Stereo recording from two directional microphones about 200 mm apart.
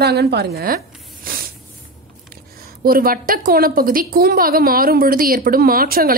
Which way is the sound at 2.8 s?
45° right (ahead or behind).